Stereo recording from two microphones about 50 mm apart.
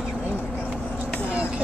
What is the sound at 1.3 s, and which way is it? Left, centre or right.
Vehicle, right.